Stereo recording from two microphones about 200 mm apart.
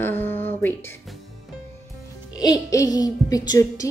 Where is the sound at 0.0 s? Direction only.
10° left (ahead or behind).